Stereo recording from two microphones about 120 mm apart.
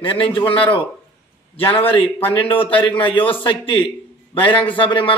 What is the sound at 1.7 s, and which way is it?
A man's voice, 50° left (ahead or behind).